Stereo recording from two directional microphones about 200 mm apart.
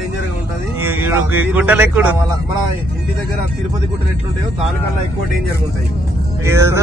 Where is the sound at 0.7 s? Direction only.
10° right (ahead or behind).